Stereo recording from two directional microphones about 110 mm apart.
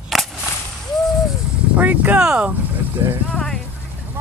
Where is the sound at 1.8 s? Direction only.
15° right (ahead or behind).